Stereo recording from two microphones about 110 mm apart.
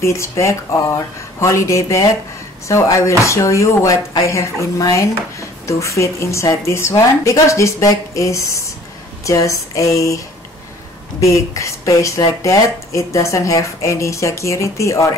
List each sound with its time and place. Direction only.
0.0 s speech: 25° left (ahead or behind)